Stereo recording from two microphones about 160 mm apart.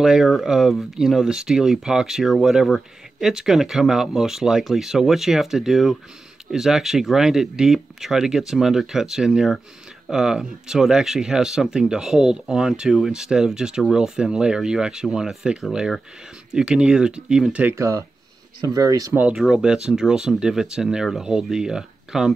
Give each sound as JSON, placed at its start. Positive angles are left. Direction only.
{"t": 0.0, "sound": "speech", "side_deg": -5}
{"t": 19.1, "sound": "speech", "side_deg": -5}